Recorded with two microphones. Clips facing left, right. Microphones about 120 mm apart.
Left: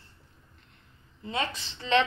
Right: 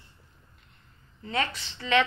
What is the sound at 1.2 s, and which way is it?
Speech, 20° left (ahead or behind).